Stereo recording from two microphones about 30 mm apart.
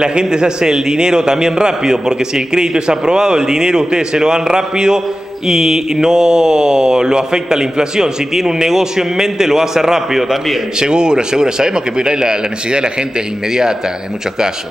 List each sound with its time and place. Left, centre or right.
0.0 s speech: right
10.8 s speech: right